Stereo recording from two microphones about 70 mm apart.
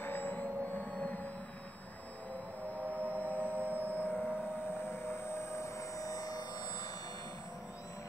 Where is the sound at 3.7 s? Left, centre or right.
Right.